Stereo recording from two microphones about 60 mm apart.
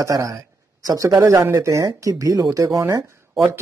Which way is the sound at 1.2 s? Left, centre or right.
Right.